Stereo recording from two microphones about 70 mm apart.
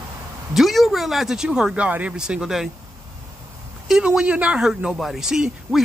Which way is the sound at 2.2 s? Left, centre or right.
Centre.